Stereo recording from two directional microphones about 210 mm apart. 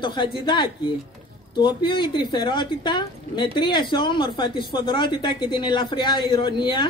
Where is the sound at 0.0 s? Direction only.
20° left (ahead or behind).